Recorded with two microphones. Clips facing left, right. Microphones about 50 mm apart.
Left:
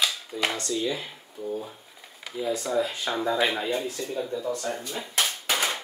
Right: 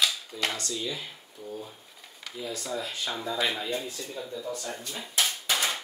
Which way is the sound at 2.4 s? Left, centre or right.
Centre.